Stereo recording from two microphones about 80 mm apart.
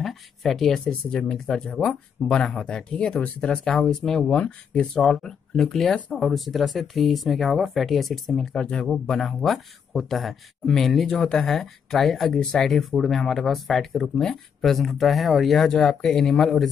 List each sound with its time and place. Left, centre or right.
0.0 s speech: centre